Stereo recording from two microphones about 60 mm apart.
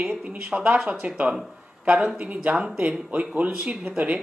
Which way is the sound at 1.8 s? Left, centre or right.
Centre.